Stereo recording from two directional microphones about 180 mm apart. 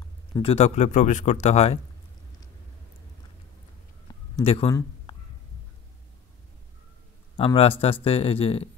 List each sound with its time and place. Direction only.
0.4 s speech: 35° left (ahead or behind)
4.4 s speech: 35° left (ahead or behind)
7.3 s speech: 30° left (ahead or behind)